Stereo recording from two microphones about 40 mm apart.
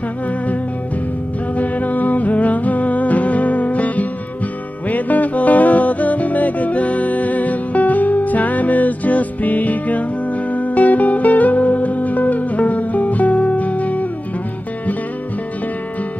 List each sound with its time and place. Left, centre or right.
1.6 s music: left